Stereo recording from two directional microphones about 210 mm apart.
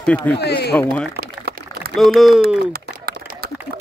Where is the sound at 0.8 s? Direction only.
5° left (ahead or behind).